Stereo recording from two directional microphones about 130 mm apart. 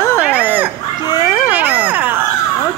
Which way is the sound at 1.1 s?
35° left (ahead or behind).